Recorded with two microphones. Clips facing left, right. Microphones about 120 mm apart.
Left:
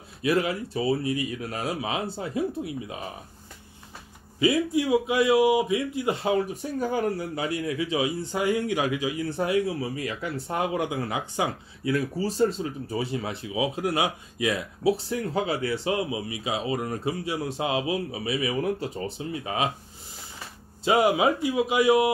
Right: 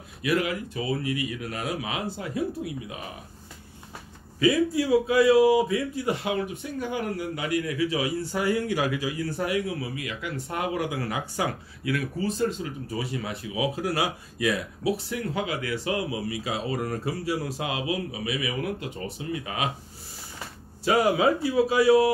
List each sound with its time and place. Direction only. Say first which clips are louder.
0.2 s speech: left 1 dB; 30° left (ahead or behind)
4.7 s a man's voice: right 1 dB; 20° left (ahead or behind)
20.8 s a man's voice: even; 20° left (ahead or behind)